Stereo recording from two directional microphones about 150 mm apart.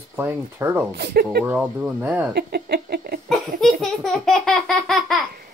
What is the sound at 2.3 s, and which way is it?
Speech, 90° right.